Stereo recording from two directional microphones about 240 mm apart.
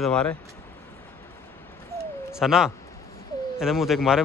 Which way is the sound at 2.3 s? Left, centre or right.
Centre.